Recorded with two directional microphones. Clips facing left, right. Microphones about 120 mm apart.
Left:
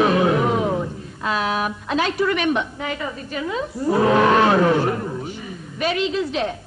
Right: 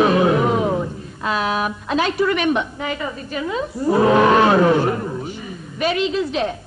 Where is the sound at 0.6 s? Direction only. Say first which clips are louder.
Right 2 dB; 30° right (ahead or behind).